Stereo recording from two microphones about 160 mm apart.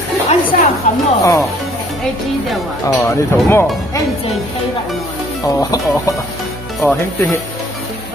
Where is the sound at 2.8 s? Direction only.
15° left (ahead or behind).